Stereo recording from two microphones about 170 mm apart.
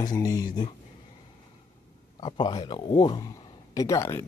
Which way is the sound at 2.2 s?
25° left (ahead or behind).